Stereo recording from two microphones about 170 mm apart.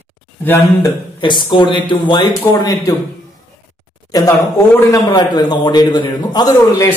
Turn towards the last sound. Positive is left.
turn(degrees=20)  # may be behind; listen again after turning